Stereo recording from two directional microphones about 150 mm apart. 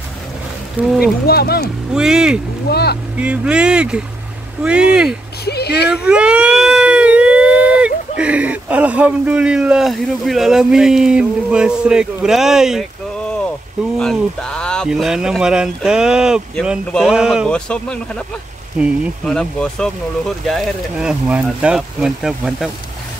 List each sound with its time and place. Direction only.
0.7 s speech: 5° right (ahead or behind)
1.2 s speech: 90° left
2.0 s speech: 5° right (ahead or behind)
2.7 s speech: 90° left
3.2 s speech: 10° right (ahead or behind)
5.4 s a sound: 90° left
5.9 s speech: 5° right (ahead or behind)
13.9 s speech: 5° left (ahead or behind)
17.5 s speech: 5° left (ahead or behind)